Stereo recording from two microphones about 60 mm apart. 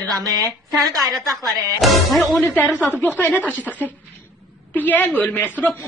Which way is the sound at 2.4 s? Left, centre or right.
Left.